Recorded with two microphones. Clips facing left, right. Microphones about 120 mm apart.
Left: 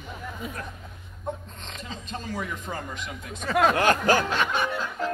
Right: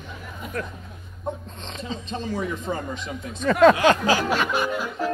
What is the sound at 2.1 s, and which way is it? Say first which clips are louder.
Speech: right 4 dB; 20° right (ahead or behind).